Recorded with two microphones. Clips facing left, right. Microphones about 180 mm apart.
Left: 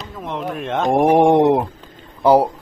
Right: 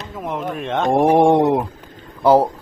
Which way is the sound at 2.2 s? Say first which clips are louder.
Even; 15° left (ahead or behind).